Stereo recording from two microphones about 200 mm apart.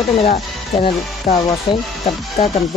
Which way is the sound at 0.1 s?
30° left (ahead or behind).